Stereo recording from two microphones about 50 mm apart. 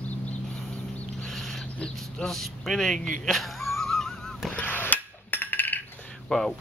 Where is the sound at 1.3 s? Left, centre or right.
Centre.